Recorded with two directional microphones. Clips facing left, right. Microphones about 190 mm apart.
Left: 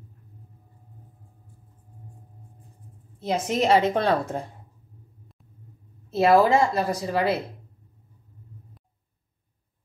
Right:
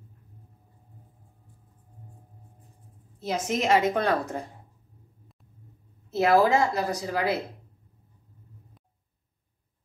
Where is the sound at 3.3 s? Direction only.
30° left (ahead or behind).